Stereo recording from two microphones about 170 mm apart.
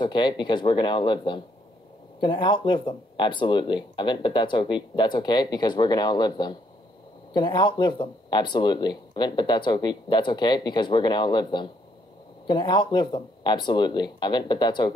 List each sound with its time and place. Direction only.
0.0 s speech: 25° left (ahead or behind)